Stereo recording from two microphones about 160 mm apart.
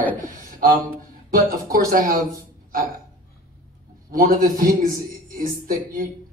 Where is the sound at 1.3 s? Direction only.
60° right (ahead or behind).